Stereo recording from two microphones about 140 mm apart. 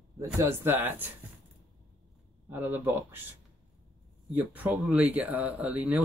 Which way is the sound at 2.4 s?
15° right (ahead or behind).